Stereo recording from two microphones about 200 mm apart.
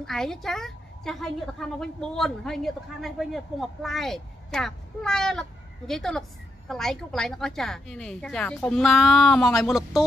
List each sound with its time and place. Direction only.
0.0 s a woman's voice: centre (ahead or behind)